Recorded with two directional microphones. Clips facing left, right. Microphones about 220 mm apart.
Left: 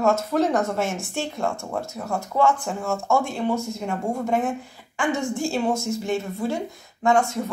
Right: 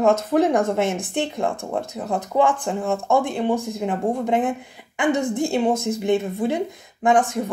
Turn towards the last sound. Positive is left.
turn(degrees=-15)  # may be behind; listen again after turning